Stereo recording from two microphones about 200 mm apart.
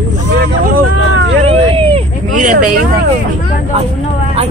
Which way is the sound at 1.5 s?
25° right (ahead or behind).